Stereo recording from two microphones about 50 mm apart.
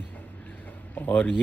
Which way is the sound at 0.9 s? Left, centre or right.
Left.